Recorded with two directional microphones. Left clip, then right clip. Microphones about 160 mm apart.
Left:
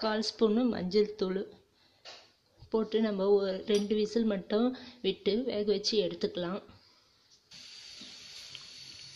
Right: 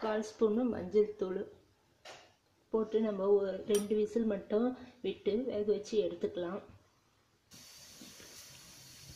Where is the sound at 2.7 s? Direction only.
20° left (ahead or behind).